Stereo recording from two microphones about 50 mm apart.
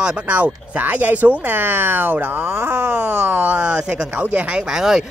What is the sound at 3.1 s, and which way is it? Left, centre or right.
Speech, right.